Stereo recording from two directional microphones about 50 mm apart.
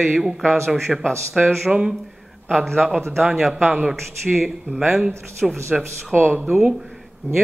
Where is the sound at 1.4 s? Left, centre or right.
Centre.